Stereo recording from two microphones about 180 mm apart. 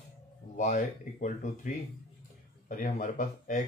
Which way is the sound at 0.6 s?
40° left (ahead or behind).